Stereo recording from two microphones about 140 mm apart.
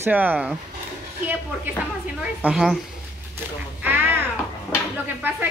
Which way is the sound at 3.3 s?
15° right (ahead or behind).